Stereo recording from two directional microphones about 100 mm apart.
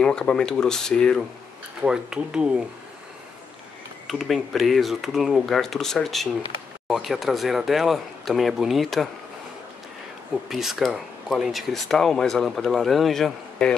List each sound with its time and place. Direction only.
0.0 s speech: 10° left (ahead or behind)
1.8 s speech: 10° right (ahead or behind)
4.1 s speech: centre (ahead or behind)
10.5 s speech: centre (ahead or behind)